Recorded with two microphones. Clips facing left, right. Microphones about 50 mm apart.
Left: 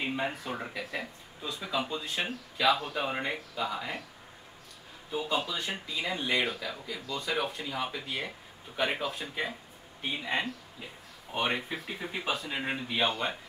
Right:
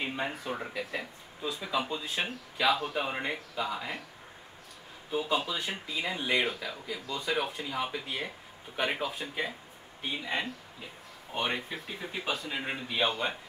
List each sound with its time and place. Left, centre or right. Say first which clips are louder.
0.0 s speech: left 1 dB; centre
5.1 s speech: right 1 dB; centre
11.3 s speech: left 2 dB; centre